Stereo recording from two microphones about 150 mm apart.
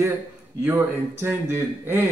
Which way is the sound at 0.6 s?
15° right (ahead or behind).